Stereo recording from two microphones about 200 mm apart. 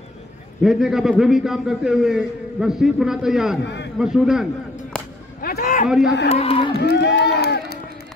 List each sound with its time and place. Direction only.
0.6 s a man's voice: centre (ahead or behind)
3.6 s a man's voice: 60° left (ahead or behind)
4.0 s a man's voice: centre (ahead or behind)
4.9 s whip: 5° left (ahead or behind)
5.4 s a sound: 45° left (ahead or behind)
5.9 s a man's voice: centre (ahead or behind)
6.2 s speech: 30° left (ahead or behind)
6.8 s run: 55° left (ahead or behind)